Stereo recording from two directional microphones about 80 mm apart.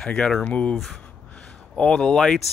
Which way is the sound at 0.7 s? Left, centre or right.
Centre.